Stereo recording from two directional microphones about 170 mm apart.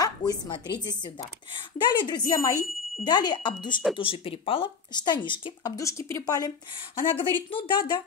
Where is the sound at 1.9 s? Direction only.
25° left (ahead or behind).